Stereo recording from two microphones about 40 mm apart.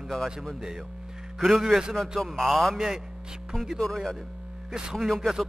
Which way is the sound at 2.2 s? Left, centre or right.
Centre.